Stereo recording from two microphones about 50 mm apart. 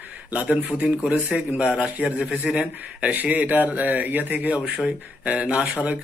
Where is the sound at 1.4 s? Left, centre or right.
Right.